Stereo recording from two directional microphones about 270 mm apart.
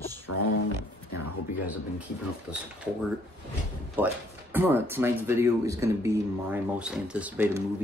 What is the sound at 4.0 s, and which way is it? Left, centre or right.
Speech, centre.